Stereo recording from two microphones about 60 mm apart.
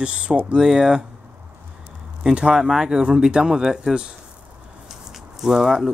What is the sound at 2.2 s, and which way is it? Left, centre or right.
Speech, centre.